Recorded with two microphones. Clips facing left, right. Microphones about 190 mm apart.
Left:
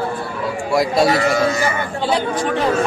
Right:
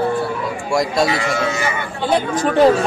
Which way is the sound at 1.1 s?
40° left (ahead or behind).